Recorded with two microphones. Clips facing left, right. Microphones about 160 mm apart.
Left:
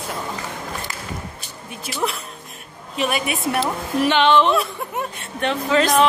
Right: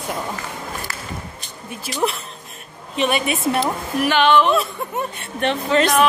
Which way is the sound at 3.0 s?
Centre (ahead or behind).